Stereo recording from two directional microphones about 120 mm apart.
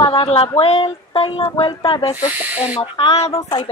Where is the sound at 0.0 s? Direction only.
45° left (ahead or behind).